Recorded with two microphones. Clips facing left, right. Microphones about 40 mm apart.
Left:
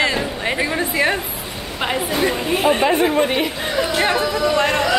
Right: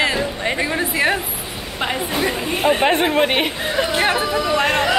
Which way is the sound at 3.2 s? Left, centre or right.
Right.